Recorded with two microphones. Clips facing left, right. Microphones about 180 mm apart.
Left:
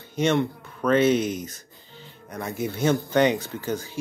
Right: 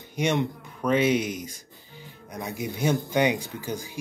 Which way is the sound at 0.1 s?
15° right (ahead or behind).